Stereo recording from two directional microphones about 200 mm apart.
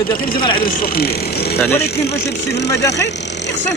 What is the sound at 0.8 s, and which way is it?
Speech, 50° left (ahead or behind).